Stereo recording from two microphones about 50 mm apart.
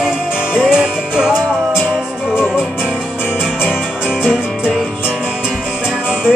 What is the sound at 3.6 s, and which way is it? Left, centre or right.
Music, centre.